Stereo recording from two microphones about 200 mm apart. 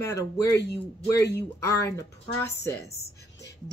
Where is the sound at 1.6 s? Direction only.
15° left (ahead or behind).